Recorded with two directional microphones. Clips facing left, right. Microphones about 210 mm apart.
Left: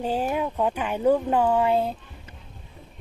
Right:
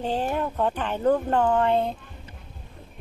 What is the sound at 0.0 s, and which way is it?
Speech, 10° left (ahead or behind).